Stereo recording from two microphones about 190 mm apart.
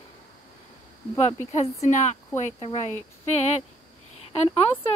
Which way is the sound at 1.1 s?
35° left (ahead or behind).